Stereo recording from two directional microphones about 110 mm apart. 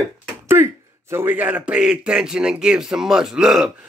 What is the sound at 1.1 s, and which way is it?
A man's voice, 15° right (ahead or behind).